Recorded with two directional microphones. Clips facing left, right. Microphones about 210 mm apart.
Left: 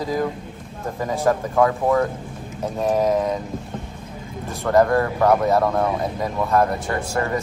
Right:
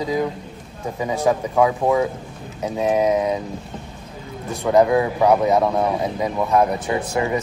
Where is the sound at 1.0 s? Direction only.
Centre (ahead or behind).